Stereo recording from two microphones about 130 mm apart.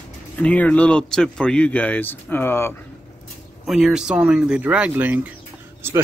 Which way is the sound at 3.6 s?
Centre (ahead or behind).